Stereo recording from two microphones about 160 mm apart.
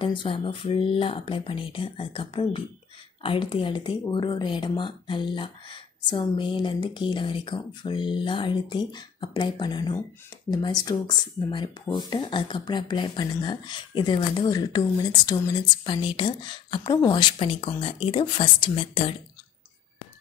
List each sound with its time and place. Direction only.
0.0 s speech: 30° left (ahead or behind)